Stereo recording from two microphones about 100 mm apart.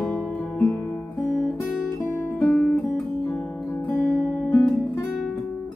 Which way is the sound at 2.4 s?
15° left (ahead or behind).